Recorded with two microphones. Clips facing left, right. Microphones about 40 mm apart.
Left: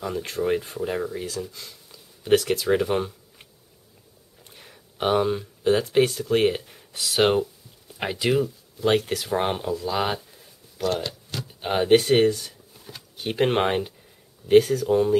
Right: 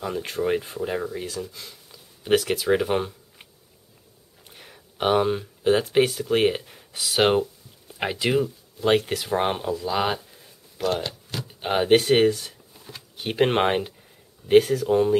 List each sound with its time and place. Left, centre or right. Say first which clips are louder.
0.0 s speech: even; centre
4.5 s speech: right 2 dB; centre